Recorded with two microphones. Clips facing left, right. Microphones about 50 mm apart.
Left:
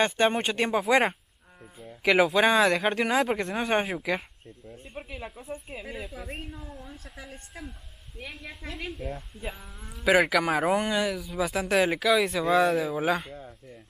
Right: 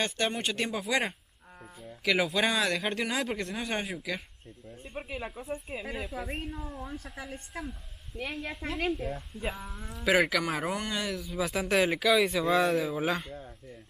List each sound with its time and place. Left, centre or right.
0.0 s speech: left
2.1 s speech: centre
4.9 s a man's voice: centre
8.6 s speech: right
8.9 s a man's voice: centre